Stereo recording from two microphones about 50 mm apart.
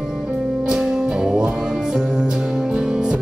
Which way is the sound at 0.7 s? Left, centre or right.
Centre.